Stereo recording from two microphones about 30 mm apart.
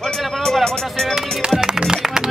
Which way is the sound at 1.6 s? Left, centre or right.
Right.